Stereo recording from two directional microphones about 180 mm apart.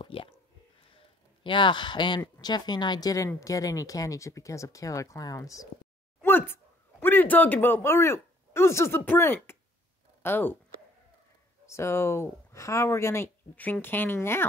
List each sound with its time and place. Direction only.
0.0 s speech: 30° left (ahead or behind)
1.4 s speech: 25° left (ahead or behind); by 10.6 s 10° left (ahead or behind)
11.6 s speech: 15° left (ahead or behind)